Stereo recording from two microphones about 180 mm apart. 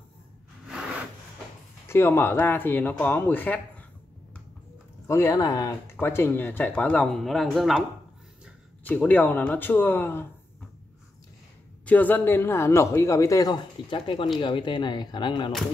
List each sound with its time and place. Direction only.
1.9 s speech: 15° left (ahead or behind)
5.0 s speech: 15° left (ahead or behind)
8.8 s speech: 10° left (ahead or behind)
11.8 s speech: 10° left (ahead or behind); by 15.5 s 25° left (ahead or behind)